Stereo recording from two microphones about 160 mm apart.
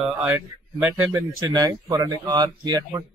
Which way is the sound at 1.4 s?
20° right (ahead or behind).